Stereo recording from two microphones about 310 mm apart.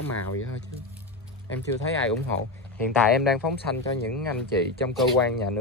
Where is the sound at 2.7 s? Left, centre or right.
Centre.